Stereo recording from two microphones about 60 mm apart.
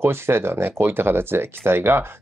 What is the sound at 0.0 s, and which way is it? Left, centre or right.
Speech, right.